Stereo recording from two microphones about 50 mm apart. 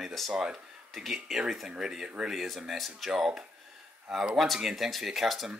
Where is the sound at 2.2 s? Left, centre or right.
Centre.